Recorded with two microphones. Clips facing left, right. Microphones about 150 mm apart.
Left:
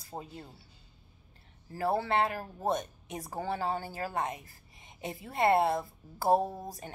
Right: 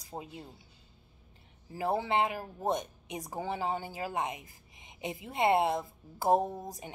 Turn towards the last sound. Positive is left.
turn(degrees=-15)  # may be behind; listen again after turning